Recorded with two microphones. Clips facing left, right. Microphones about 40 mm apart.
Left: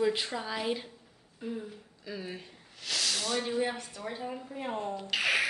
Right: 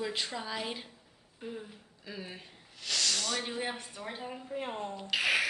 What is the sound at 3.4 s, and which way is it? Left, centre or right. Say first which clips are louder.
Speech: left 5 dB; centre.